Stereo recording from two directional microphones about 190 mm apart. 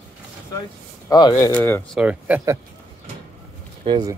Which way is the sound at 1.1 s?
20° left (ahead or behind).